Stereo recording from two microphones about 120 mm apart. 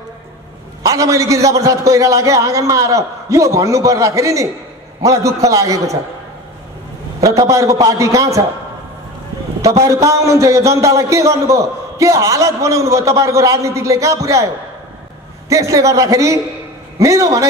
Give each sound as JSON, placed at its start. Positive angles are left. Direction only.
{"t": 0.8, "sound": "a man's voice", "side_deg": -25}
{"t": 7.2, "sound": "a man's voice", "side_deg": -25}
{"t": 9.8, "sound": "a man's voice", "side_deg": -25}
{"t": 15.5, "sound": "a man's voice", "side_deg": -25}